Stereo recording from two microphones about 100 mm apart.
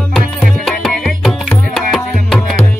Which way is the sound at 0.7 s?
5° left (ahead or behind).